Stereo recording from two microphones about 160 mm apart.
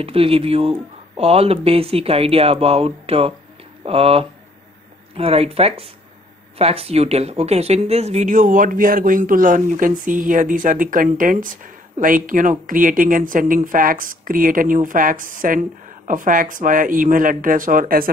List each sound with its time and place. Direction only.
0.0 s speech: 35° right (ahead or behind); by 18.1 s 65° right (ahead or behind)